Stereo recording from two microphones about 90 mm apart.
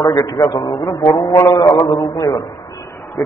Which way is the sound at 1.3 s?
40° left (ahead or behind).